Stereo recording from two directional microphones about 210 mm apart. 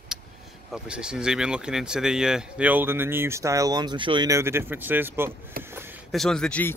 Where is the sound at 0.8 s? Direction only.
5° right (ahead or behind).